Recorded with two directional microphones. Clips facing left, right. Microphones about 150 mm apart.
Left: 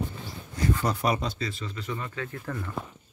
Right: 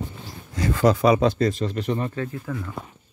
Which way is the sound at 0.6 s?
90° right.